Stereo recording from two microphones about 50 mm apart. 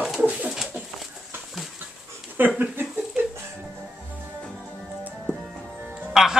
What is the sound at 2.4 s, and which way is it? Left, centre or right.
Speech, right.